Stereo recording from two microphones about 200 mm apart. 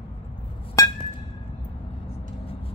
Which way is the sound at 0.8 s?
15° left (ahead or behind).